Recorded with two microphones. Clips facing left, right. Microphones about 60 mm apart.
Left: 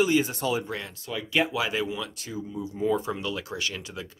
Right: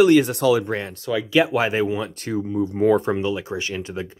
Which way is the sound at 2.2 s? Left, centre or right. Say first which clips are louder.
Right 11 dB; right.